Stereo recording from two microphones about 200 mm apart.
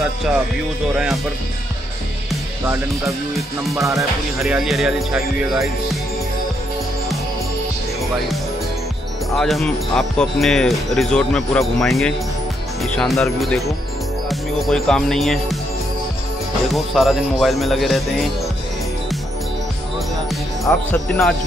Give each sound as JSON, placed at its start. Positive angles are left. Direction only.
{"t": 3.7, "sound": "music", "side_deg": -15}
{"t": 4.4, "sound": "speech", "side_deg": 0}
{"t": 9.3, "sound": "speech", "side_deg": 0}
{"t": 14.3, "sound": "music", "side_deg": 0}
{"t": 16.7, "sound": "speech", "side_deg": 0}
{"t": 20.7, "sound": "speech", "side_deg": 10}